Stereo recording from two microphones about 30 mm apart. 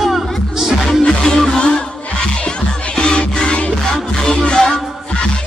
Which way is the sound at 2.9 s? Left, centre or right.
Left.